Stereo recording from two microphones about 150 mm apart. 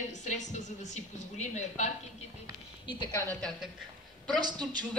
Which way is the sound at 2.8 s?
25° left (ahead or behind).